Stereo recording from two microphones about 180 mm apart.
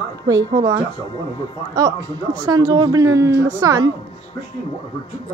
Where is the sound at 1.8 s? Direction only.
25° right (ahead or behind).